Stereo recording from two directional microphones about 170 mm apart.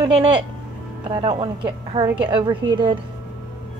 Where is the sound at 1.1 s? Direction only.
30° right (ahead or behind).